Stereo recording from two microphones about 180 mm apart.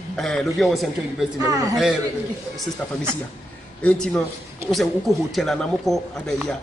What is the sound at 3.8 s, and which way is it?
Speech, 5° left (ahead or behind).